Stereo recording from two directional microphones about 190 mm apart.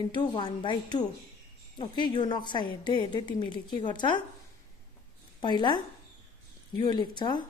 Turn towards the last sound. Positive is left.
turn(degrees=25)  # may be behind; listen again after turning